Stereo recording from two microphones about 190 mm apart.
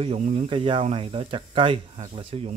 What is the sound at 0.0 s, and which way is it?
Speech, 30° right (ahead or behind).